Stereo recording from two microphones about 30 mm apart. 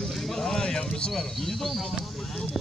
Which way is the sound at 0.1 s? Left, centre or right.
Centre.